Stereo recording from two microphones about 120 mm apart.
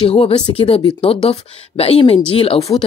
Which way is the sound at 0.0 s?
55° left (ahead or behind).